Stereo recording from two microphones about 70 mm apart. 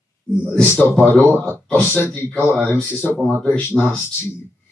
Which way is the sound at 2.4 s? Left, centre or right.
Centre.